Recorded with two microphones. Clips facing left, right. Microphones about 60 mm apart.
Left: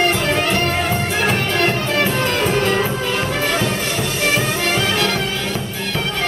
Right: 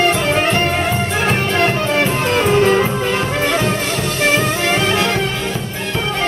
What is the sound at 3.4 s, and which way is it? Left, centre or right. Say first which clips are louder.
Music: right 3 dB; centre.